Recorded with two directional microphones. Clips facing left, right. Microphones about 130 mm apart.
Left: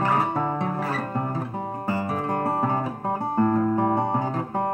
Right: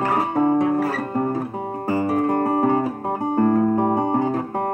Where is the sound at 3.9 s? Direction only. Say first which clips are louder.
Right 4 dB; 40° right (ahead or behind).